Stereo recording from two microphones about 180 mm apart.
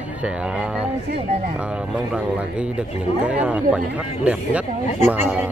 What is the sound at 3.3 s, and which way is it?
Speech, 5° right (ahead or behind).